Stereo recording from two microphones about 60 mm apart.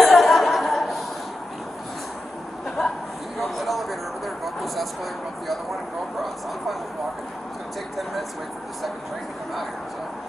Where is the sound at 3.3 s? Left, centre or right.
Centre.